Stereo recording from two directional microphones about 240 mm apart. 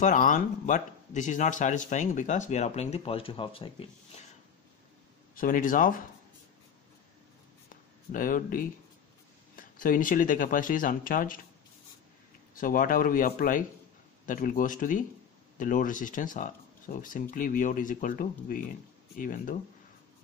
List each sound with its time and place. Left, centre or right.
0.0 s speech: left
5.3 s speech: left
7.7 s a sound: left
9.6 s speech: left
12.5 s speech: left